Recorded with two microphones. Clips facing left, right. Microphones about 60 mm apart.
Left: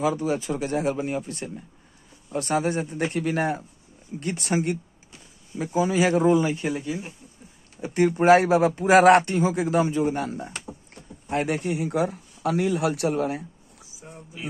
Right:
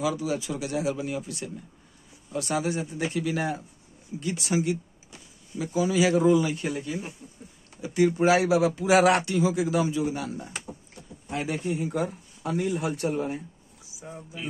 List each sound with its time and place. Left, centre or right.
0.0 s speech: left
7.8 s speech: left
11.2 s speech: left